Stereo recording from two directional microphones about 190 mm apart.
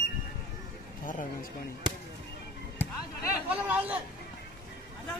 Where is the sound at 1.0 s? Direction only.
45° left (ahead or behind).